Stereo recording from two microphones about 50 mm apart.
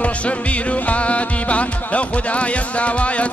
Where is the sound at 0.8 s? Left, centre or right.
Left.